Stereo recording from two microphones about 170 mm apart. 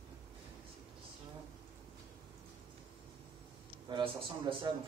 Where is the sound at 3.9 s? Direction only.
30° right (ahead or behind).